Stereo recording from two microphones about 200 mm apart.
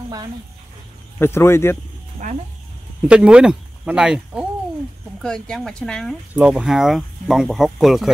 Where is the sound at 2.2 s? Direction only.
40° right (ahead or behind).